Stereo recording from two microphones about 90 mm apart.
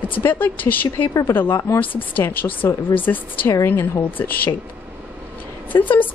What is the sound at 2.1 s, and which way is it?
A woman's voice, 20° left (ahead or behind).